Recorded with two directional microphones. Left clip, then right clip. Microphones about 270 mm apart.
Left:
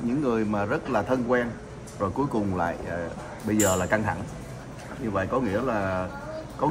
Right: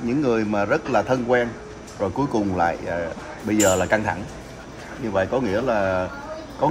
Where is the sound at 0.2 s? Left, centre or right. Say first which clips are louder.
Right 5 dB; right.